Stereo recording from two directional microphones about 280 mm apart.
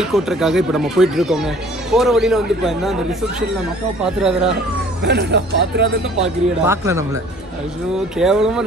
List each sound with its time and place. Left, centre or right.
0.0 s speech: centre
5.0 s speech: right
6.6 s speech: centre
8.2 s speech: centre